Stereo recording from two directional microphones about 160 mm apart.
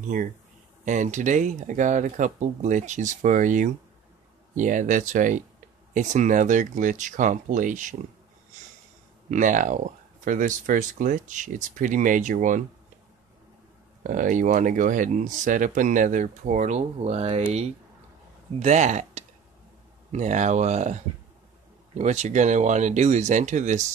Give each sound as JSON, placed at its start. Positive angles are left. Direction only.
{"t": 0.8, "sound": "speech", "side_deg": -50}
{"t": 9.3, "sound": "speech", "side_deg": -55}
{"t": 14.0, "sound": "speech", "side_deg": -55}